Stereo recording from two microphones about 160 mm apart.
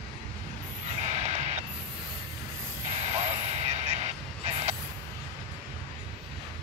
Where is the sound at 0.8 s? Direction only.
45° right (ahead or behind).